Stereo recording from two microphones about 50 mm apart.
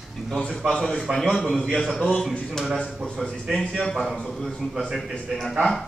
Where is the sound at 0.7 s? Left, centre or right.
Centre.